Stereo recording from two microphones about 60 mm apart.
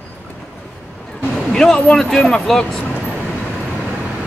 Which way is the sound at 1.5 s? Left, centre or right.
Centre.